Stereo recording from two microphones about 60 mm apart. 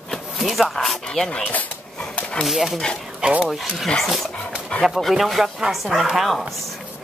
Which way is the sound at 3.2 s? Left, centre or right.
Centre.